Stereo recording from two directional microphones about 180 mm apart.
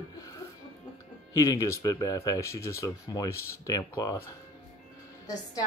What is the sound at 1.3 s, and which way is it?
Speech, 20° left (ahead or behind).